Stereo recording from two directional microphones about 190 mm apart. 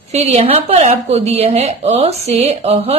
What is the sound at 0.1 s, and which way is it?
A woman's voice, 35° right (ahead or behind).